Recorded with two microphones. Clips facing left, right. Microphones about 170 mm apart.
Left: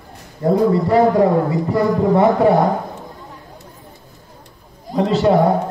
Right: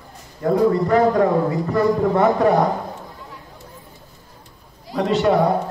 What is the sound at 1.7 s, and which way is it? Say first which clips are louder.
Speech: left 2 dB; 25° left (ahead or behind).